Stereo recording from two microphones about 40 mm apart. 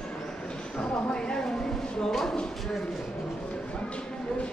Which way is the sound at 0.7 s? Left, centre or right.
Centre.